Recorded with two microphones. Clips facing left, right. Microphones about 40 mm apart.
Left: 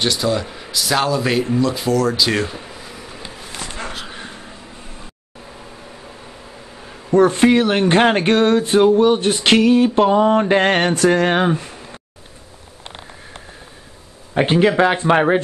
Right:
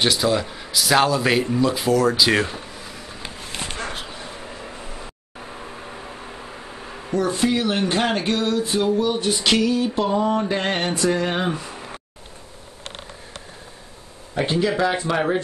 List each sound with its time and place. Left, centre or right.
0.0 s speech: centre
7.2 s speech: left
14.3 s speech: left